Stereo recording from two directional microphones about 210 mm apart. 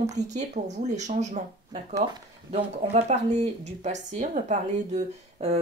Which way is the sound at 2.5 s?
35° right (ahead or behind).